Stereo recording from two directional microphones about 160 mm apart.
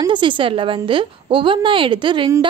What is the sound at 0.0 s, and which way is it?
A woman's voice, 30° right (ahead or behind).